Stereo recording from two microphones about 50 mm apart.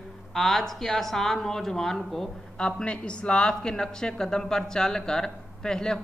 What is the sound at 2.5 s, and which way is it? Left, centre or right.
Speech, centre.